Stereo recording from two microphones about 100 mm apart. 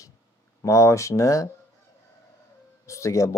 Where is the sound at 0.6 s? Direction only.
30° left (ahead or behind).